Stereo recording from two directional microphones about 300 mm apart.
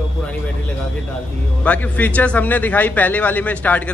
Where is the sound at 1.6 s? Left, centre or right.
Centre.